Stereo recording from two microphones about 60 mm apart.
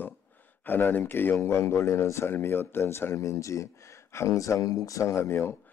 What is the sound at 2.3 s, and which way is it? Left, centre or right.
Speech, left.